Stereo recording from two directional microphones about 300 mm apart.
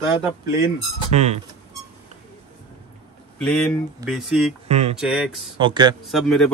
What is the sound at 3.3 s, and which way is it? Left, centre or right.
Speech, centre.